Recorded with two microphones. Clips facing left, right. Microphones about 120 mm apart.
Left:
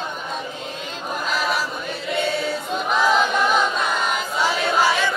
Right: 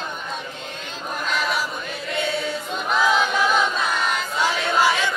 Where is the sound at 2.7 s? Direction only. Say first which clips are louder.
Left 1 dB; centre (ahead or behind).